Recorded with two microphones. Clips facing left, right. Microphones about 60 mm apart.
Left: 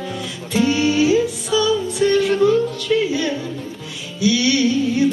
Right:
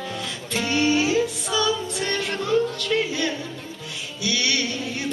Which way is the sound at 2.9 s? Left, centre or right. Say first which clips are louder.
Left 6 dB; centre.